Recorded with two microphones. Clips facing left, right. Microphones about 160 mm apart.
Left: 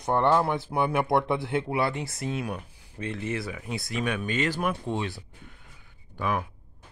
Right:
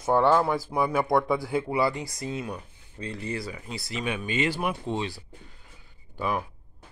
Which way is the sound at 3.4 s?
Centre (ahead or behind).